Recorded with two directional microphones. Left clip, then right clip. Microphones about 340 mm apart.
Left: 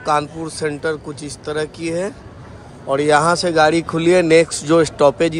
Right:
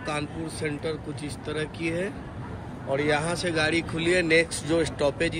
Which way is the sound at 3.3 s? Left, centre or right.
Centre.